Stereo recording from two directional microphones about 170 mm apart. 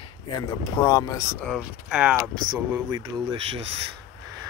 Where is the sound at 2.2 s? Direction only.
20° right (ahead or behind).